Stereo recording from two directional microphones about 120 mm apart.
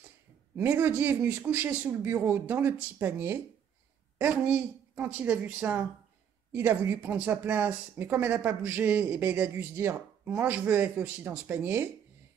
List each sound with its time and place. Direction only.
0.6 s speech: 15° right (ahead or behind)